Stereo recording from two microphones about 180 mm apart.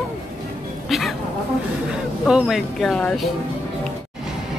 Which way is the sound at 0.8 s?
Centre (ahead or behind).